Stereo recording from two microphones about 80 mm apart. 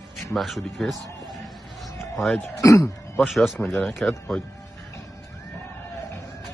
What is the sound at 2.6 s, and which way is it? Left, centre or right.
Speech, left.